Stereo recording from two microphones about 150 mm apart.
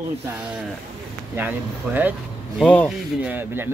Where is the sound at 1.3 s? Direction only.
10° right (ahead or behind).